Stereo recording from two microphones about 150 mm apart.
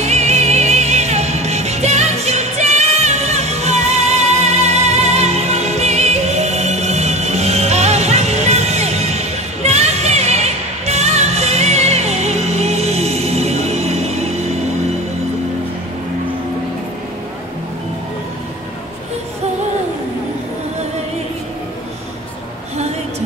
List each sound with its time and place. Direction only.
0.0 s music: 45° right (ahead or behind)